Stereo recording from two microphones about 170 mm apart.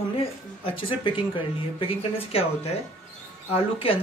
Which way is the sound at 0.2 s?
35° left (ahead or behind).